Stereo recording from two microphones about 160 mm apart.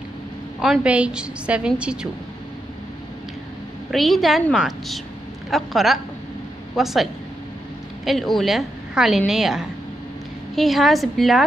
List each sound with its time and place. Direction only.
0.6 s a woman's voice: 5° right (ahead or behind)
3.9 s a woman's voice: centre (ahead or behind)